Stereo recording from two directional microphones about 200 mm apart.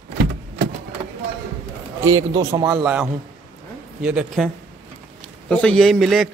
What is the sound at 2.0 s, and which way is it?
Speech, 15° right (ahead or behind).